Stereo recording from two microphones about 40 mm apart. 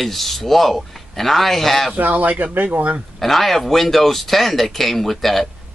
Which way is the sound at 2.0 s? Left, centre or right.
Right.